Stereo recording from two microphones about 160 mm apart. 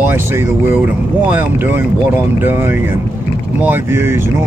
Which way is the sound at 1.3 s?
10° right (ahead or behind).